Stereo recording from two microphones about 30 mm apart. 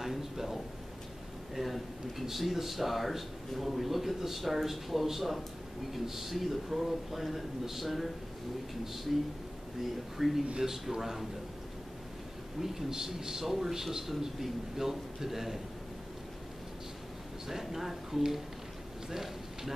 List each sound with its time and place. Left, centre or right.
0.0 s a sound: centre
1.5 s a man's voice: centre
10.1 s a man's voice: centre
12.5 s a man's voice: centre
17.5 s a man's voice: centre